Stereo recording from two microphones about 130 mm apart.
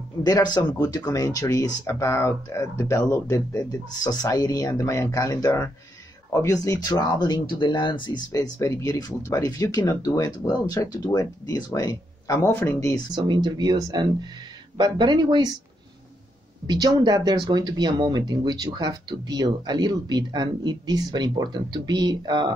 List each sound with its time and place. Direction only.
0.2 s speech: 30° left (ahead or behind)
8.3 s speech: 25° left (ahead or behind)
13.1 s speech: 35° right (ahead or behind)
16.6 s speech: 30° right (ahead or behind)